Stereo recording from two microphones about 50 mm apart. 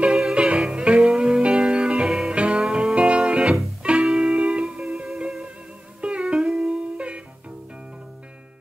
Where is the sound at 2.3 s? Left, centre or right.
Right.